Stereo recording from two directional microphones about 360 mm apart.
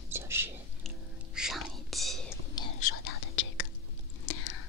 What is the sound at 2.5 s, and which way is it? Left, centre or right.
Whispering, centre.